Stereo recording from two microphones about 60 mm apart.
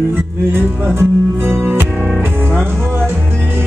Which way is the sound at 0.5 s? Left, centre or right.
Right.